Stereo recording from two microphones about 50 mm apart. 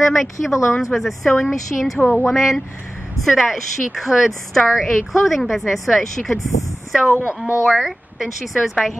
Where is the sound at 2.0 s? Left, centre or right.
Left.